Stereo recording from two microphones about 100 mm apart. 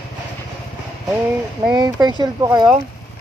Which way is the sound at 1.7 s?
45° right (ahead or behind).